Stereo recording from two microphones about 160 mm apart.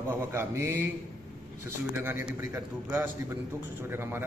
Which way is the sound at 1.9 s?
10° right (ahead or behind).